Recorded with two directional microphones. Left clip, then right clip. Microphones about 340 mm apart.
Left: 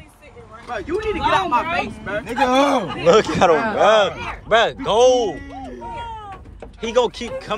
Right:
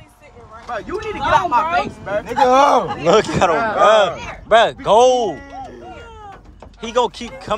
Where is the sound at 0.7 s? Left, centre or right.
Right.